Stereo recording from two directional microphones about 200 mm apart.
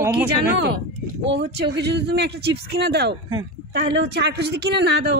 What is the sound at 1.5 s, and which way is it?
A woman's voice, 60° right (ahead or behind).